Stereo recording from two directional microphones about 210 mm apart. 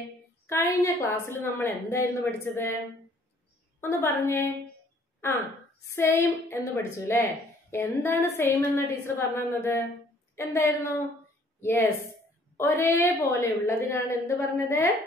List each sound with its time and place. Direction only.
0.5 s a woman's voice: 10° left (ahead or behind)
3.8 s a woman's voice: 10° left (ahead or behind)
5.9 s a woman's voice: 10° left (ahead or behind)